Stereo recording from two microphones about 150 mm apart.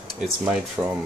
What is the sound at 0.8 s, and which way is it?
Speech, 10° right (ahead or behind).